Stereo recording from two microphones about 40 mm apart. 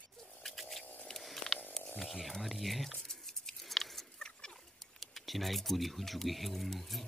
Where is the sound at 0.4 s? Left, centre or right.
Centre.